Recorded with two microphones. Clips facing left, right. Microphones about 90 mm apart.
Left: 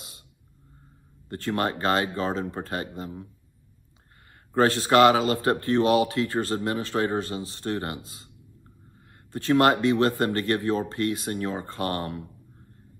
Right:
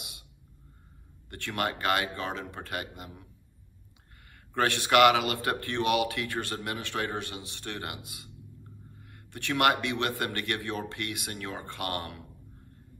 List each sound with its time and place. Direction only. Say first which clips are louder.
1.3 s speech: left 5 dB; 30° left (ahead or behind)
4.6 s speech: left 4 dB; 30° left (ahead or behind)
9.3 s speech: left 6 dB; 30° left (ahead or behind)